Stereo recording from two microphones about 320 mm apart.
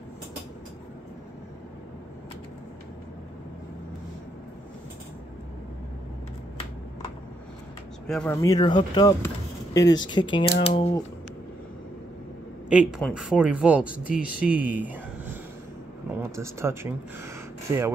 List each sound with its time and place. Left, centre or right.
8.1 s speech: centre
12.6 s speech: centre